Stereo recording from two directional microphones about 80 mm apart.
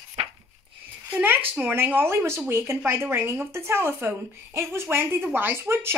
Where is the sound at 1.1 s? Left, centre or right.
Right.